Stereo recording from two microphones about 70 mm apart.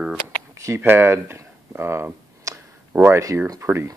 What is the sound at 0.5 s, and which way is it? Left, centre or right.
Speech, right.